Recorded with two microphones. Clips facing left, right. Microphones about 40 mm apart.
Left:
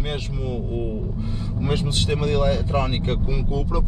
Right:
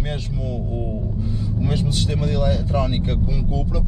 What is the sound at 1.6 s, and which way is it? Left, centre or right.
Speech, left.